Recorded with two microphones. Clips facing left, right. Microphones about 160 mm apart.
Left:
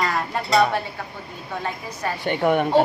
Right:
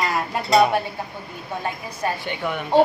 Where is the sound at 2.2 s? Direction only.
50° left (ahead or behind).